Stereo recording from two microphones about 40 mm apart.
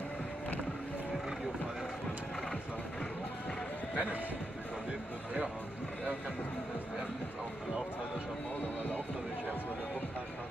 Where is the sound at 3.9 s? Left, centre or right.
Right.